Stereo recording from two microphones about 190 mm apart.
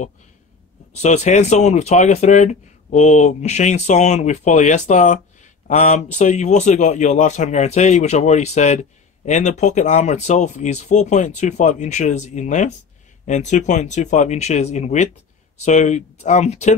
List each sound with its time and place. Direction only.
0.9 s speech: 35° left (ahead or behind)